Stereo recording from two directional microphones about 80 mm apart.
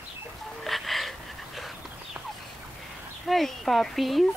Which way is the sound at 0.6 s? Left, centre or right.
Centre.